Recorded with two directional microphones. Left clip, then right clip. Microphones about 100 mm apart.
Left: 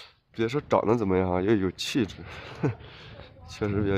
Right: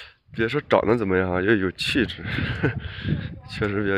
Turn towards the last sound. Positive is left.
turn(degrees=-5)  # may be behind; listen again after turning